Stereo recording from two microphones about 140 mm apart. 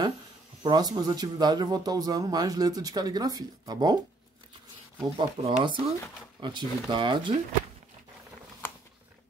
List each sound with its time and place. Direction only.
0.7 s speech: 30° right (ahead or behind)
5.1 s speech: 40° right (ahead or behind)